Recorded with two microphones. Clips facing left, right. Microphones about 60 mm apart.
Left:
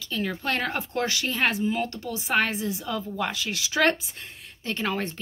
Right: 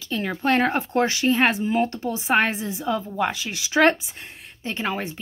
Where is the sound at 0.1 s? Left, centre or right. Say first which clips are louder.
Right 6 dB; right.